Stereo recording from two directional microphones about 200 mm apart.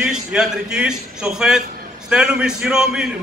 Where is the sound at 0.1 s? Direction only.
5° right (ahead or behind).